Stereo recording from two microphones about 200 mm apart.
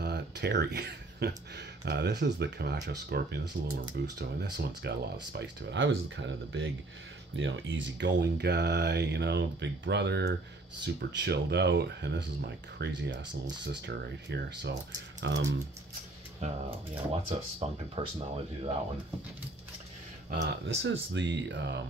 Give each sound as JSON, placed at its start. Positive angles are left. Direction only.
{"t": 0.0, "sound": "a sound", "side_deg": -55}
{"t": 1.9, "sound": "speech", "side_deg": -55}
{"t": 17.6, "sound": "speech", "side_deg": -30}
{"t": 20.2, "sound": "speech", "side_deg": -50}